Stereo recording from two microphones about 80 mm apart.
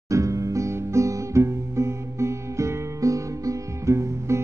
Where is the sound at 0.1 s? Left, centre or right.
Right.